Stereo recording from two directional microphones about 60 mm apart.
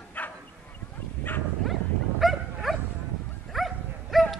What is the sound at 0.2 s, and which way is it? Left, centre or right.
Bow-wow, left.